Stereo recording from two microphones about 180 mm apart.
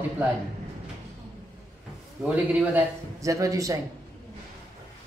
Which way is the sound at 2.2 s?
15° right (ahead or behind).